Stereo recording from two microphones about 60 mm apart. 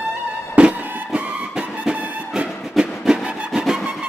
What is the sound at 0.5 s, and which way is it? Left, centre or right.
Music, centre.